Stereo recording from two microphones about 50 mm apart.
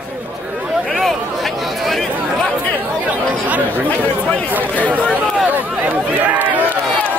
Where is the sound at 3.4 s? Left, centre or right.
Right.